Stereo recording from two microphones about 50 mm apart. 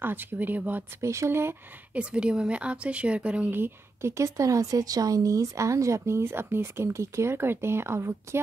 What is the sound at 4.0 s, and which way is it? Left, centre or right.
A woman's voice, right.